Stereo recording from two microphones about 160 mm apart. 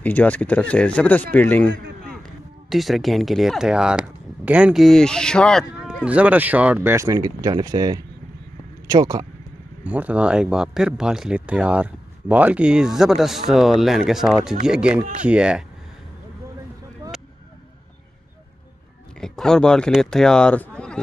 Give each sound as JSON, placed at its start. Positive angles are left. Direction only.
{"t": 0.0, "sound": "speech", "side_deg": 10}
{"t": 2.7, "sound": "speech", "side_deg": 0}
{"t": 6.0, "sound": "speech", "side_deg": -10}
{"t": 9.8, "sound": "speech", "side_deg": -10}
{"t": 19.1, "sound": "speech", "side_deg": 5}